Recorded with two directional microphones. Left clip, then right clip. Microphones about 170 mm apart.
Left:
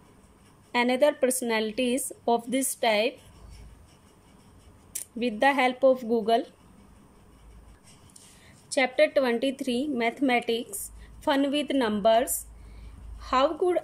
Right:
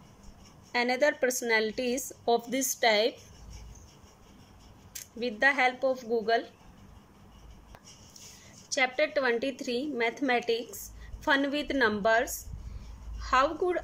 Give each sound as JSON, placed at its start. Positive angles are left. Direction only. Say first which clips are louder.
{"t": 0.7, "sound": "a woman's voice", "louder": "left 3 dB", "side_deg": 10}
{"t": 4.9, "sound": "a woman's voice", "louder": "left 4 dB", "side_deg": 15}
{"t": 8.7, "sound": "a woman's voice", "louder": "left 5 dB", "side_deg": 15}